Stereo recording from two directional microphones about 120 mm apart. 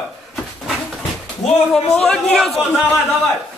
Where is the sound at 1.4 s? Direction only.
70° left (ahead or behind).